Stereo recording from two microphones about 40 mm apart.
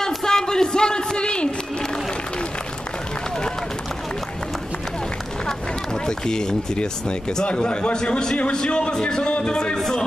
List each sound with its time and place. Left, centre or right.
0.0 s a sound: centre
6.0 s a man's voice: centre
9.8 s speech: centre